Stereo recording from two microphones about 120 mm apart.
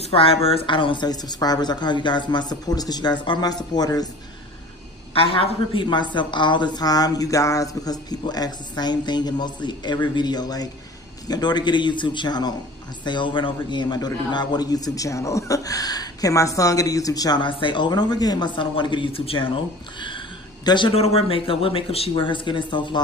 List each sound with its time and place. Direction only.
0.0 s a man's voice: 50° left (ahead or behind); by 4.1 s 35° left (ahead or behind)
5.1 s a man's voice: 50° left (ahead or behind)
20.9 s speech: 55° left (ahead or behind); by 23.0 s 40° left (ahead or behind)